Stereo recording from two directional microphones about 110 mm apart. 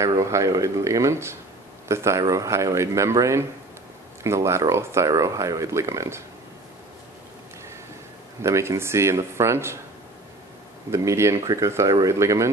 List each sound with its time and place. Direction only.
0.2 s speech: 30° right (ahead or behind)
8.4 s speech: 25° right (ahead or behind)
10.9 s speech: 25° right (ahead or behind)